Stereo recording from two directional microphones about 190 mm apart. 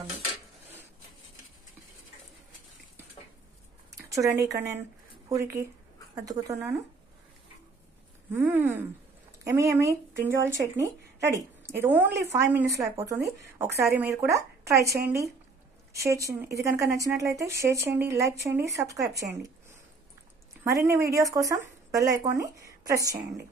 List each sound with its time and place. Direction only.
4.5 s speech: 15° right (ahead or behind)
8.3 s speech: 10° right (ahead or behind)